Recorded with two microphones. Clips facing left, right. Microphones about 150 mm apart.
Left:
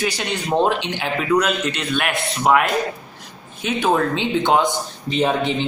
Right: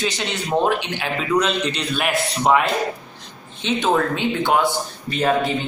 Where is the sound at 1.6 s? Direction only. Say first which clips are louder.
Left 1 dB; 5° left (ahead or behind).